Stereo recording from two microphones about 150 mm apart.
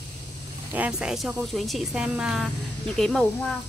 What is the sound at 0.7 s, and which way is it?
Speech, 5° right (ahead or behind).